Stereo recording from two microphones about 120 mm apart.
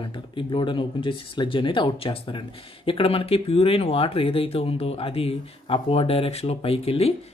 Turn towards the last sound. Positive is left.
turn(degrees=55)  # may be behind; listen again after turning